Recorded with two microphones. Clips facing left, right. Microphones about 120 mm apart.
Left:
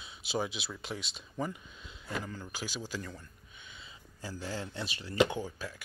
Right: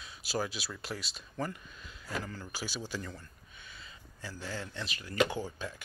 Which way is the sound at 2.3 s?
15° left (ahead or behind).